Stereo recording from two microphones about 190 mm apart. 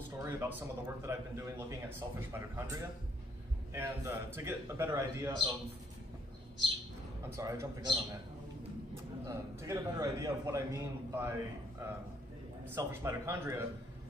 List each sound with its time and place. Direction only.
0.2 s speech: 15° right (ahead or behind)
7.3 s a man's voice: 20° right (ahead or behind)
9.3 s speech: 15° right (ahead or behind)
12.6 s speech: 15° right (ahead or behind)